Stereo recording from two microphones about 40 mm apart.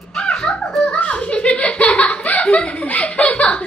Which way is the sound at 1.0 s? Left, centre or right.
Left.